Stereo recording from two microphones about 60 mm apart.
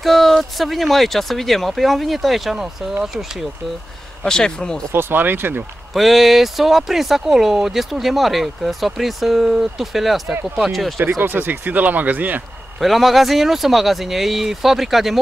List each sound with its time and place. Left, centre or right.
0.0 s speech: centre
4.2 s speech: centre
4.9 s speech: right
5.9 s speech: centre
11.0 s speech: right
12.8 s speech: centre